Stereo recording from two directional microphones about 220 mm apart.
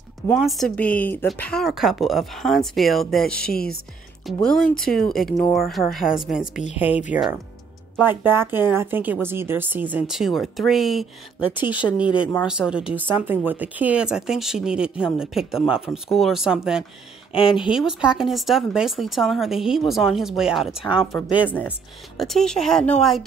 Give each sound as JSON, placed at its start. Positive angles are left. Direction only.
{"t": 0.3, "sound": "a woman's voice", "side_deg": 0}
{"t": 8.1, "sound": "a woman's voice", "side_deg": -10}
{"t": 17.3, "sound": "speech", "side_deg": 25}
{"t": 17.7, "sound": "speech", "side_deg": -5}